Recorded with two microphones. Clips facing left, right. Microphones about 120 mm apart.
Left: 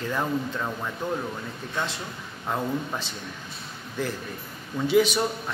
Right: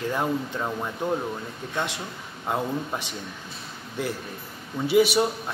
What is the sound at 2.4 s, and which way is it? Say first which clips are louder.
Speech: right 1 dB; 15° right (ahead or behind).